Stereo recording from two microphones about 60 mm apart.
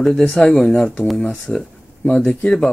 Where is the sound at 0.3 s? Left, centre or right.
Centre.